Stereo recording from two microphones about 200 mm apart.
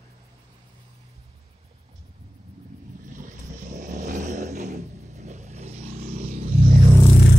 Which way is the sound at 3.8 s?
40° right (ahead or behind).